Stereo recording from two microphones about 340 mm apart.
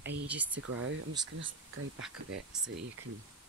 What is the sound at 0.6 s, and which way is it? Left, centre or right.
Speech, right.